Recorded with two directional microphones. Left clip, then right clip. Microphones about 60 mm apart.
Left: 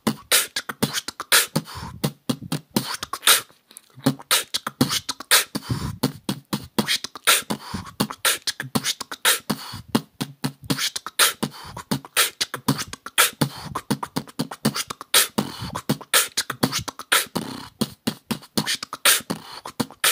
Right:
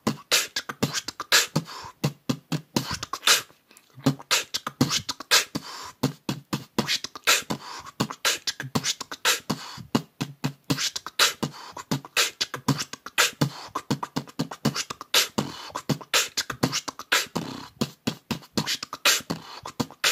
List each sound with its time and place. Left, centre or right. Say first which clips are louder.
0.0 s beatboxing: left 3 dB; left
17.1 s beatboxing: left 3 dB; left